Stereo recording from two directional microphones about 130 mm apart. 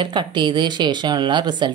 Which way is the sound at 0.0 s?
35° right (ahead or behind).